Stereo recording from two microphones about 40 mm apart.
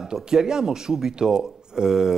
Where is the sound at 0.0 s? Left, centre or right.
Centre.